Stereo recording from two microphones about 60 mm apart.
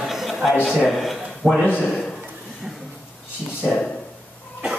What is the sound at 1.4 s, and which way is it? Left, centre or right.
Speech, right.